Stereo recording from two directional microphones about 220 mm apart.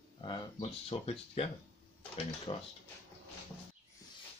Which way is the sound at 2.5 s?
25° left (ahead or behind).